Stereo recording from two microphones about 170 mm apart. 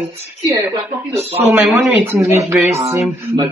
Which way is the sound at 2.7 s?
15° right (ahead or behind).